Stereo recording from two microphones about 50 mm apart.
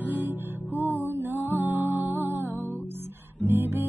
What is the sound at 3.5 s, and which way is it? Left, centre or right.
Music, right.